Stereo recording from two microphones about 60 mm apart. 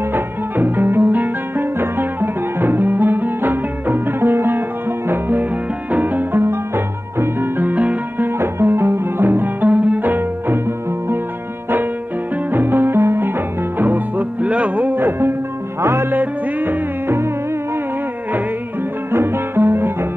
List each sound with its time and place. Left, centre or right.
0.1 s music: right
7.6 s music: right
8.4 s music: right
12.5 s music: right
19.1 s music: right